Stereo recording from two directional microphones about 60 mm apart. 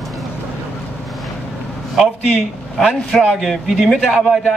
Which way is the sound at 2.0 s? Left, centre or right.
Centre.